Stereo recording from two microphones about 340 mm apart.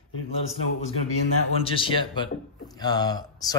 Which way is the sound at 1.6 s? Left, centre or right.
Centre.